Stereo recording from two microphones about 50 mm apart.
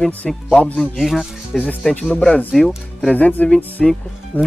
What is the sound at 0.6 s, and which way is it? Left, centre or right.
Speech, left.